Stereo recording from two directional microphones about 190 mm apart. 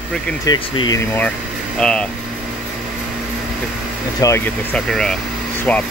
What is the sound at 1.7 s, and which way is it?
Speech, 5° left (ahead or behind).